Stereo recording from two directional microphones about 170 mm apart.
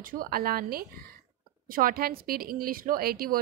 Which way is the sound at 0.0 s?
55° right (ahead or behind).